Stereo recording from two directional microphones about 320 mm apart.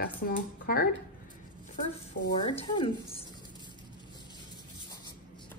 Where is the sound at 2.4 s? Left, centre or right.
Centre.